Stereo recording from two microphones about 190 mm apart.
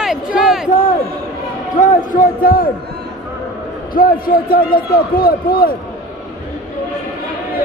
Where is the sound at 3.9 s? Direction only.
50° left (ahead or behind).